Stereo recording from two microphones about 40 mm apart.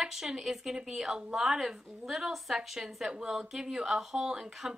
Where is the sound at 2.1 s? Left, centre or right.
Centre.